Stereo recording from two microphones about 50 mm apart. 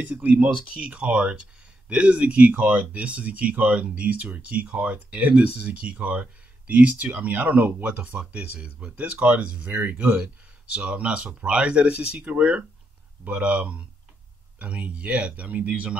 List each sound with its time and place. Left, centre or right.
0.2 s speech: right